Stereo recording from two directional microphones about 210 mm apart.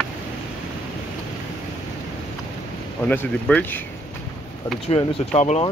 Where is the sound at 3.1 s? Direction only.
5° left (ahead or behind).